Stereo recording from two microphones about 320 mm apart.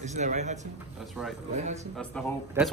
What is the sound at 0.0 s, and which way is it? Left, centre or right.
Speech, right.